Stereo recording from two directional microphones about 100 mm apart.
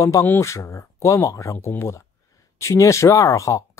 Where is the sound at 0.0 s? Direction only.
30° left (ahead or behind).